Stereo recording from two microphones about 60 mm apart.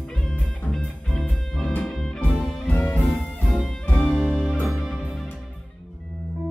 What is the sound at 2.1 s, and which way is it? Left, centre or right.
Music, left.